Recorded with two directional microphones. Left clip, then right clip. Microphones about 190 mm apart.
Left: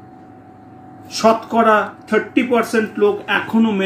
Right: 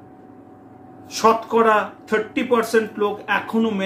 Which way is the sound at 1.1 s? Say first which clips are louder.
Left 2 dB; 15° right (ahead or behind).